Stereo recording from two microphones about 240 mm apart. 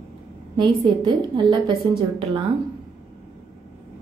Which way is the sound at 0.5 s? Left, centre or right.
Centre.